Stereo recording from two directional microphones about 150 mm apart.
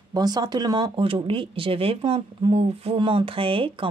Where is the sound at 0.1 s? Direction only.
25° right (ahead or behind).